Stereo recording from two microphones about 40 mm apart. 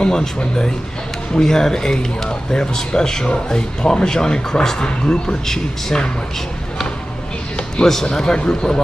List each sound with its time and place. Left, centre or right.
0.0 s speech: centre
7.7 s speech: centre